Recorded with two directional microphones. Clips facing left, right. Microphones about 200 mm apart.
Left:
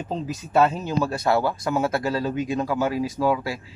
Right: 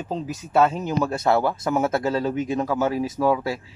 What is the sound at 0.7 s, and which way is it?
Speech, 20° right (ahead or behind).